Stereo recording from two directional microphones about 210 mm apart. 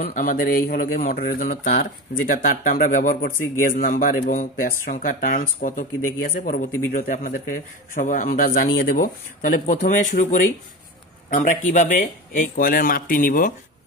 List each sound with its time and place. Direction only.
0.0 s speech: 40° left (ahead or behind)